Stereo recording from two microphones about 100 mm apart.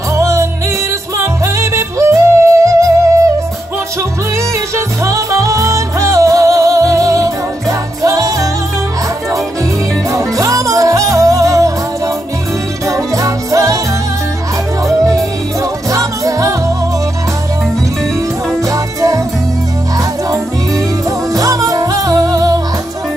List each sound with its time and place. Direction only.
0.1 s music: 30° right (ahead or behind)
1.1 s yodeling: 30° right (ahead or behind)
4.7 s music: 30° right (ahead or behind)
10.1 s music: 35° right (ahead or behind)
12.8 s music: 35° right (ahead or behind)
14.9 s music: centre (ahead or behind)
15.6 s music: 35° right (ahead or behind)
18.6 s music: 35° right (ahead or behind)